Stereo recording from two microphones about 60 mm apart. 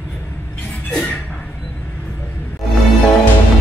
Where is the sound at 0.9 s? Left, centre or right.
Left.